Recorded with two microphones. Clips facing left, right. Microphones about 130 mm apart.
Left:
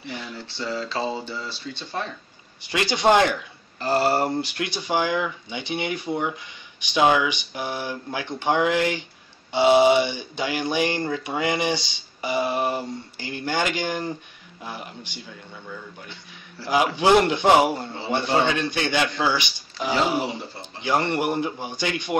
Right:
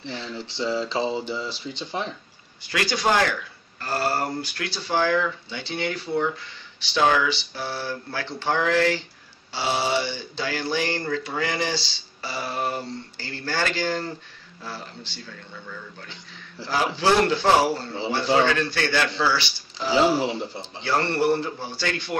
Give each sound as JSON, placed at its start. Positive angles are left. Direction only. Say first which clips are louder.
{"t": 0.0, "sound": "speech", "louder": "right 1 dB", "side_deg": 15}
{"t": 0.4, "sound": "speech", "louder": "right 4 dB", "side_deg": -20}
{"t": 2.6, "sound": "speech", "louder": "left 3 dB", "side_deg": 20}
{"t": 16.6, "sound": "speech", "louder": "left 3 dB", "side_deg": 15}
{"t": 20.3, "sound": "speech", "louder": "right 4 dB", "side_deg": -20}
{"t": 20.8, "sound": "speech", "louder": "even", "side_deg": 15}